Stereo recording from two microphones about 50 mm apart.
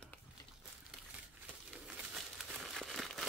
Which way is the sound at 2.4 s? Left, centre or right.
Centre.